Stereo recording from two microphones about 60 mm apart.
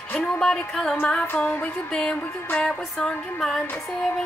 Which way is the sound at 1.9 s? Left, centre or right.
Centre.